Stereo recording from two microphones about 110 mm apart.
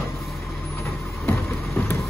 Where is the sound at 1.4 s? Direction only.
20° left (ahead or behind).